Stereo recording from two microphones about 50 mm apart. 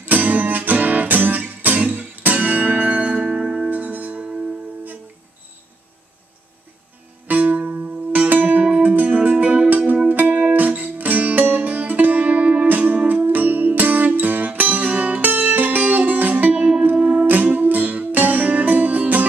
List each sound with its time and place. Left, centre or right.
0.0 s music: right; by 3.7 s centre
3.7 s music: right
7.2 s music: right
16.9 s music: centre
17.3 s music: right